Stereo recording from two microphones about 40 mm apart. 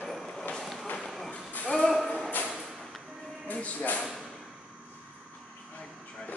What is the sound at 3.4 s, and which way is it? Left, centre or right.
Music, left.